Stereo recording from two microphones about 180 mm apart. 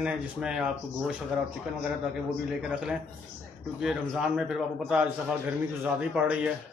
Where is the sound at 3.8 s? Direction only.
5° right (ahead or behind).